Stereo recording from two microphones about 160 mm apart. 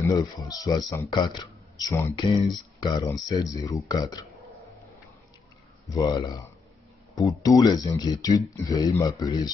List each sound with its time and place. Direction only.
0.0 s speech: 20° left (ahead or behind)
2.1 s speech: 30° left (ahead or behind)
5.9 s speech: 25° left (ahead or behind)
7.4 s speech: 20° left (ahead or behind)